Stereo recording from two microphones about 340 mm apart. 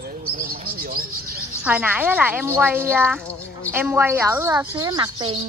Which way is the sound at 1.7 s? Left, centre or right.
Centre.